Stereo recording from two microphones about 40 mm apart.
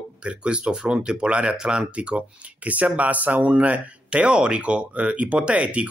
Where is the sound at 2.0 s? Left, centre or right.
Right.